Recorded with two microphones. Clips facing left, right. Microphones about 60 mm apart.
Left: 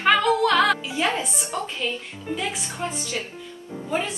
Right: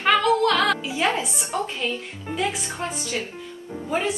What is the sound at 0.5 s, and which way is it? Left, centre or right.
Speech, centre.